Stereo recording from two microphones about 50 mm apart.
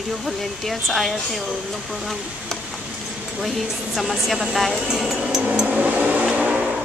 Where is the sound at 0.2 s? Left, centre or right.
Centre.